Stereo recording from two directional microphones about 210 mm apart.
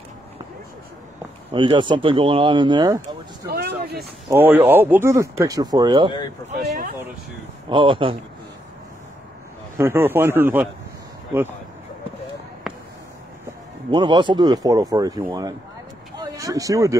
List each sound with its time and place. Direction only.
1.5 s speech: 25° right (ahead or behind)
3.4 s a sound: 50° right (ahead or behind)
4.3 s speech: 10° right (ahead or behind)
7.7 s speech: 25° right (ahead or behind)
9.8 s speech: 10° right (ahead or behind)
12.7 s a sound: centre (ahead or behind)
13.8 s speech: 20° right (ahead or behind)